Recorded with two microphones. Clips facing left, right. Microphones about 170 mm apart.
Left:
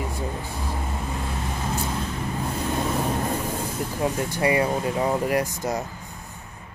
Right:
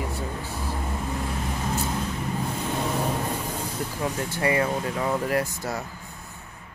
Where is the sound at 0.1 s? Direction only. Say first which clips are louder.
Left 1 dB; 15° left (ahead or behind).